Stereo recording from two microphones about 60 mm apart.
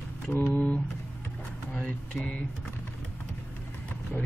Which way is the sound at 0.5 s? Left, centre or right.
Left.